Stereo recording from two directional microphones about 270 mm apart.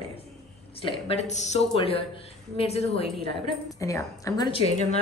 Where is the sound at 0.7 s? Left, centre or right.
Centre.